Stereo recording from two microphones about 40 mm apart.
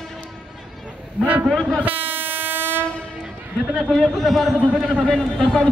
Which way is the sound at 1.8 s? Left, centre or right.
Right.